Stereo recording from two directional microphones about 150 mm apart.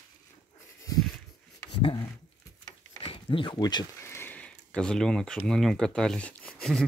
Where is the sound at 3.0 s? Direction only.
35° left (ahead or behind).